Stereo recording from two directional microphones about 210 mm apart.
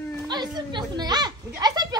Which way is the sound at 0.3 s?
20° right (ahead or behind).